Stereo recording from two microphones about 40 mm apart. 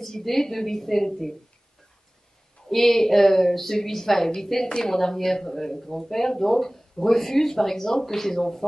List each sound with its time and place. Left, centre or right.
0.0 s speech: centre
2.7 s speech: centre
4.6 s a woman's voice: left
4.9 s speech: centre